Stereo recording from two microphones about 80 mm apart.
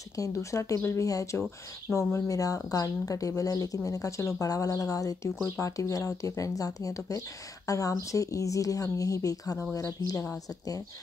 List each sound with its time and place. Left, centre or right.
0.1 s speech: left
1.9 s speech: left